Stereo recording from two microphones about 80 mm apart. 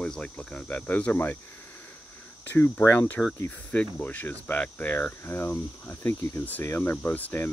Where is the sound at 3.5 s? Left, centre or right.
Centre.